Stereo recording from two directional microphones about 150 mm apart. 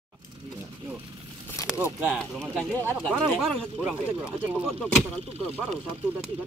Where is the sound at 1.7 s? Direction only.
10° right (ahead or behind).